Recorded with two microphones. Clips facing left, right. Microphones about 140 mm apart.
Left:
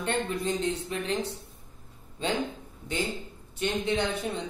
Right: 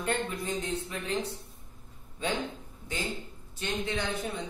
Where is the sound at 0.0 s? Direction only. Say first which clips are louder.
Left 3 dB; 25° left (ahead or behind).